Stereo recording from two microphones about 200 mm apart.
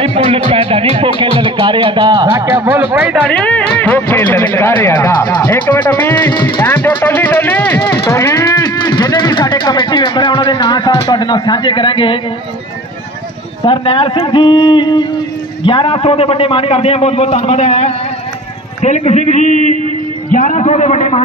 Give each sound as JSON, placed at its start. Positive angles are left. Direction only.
{"t": 0.0, "sound": "speech", "side_deg": -30}
{"t": 2.5, "sound": "speech", "side_deg": -10}
{"t": 3.3, "sound": "speech", "side_deg": 5}
{"t": 6.3, "sound": "speech", "side_deg": 20}
{"t": 6.6, "sound": "speech", "side_deg": 10}
{"t": 13.7, "sound": "a man's voice", "side_deg": 25}